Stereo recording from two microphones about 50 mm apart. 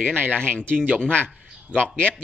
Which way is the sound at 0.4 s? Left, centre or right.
Left.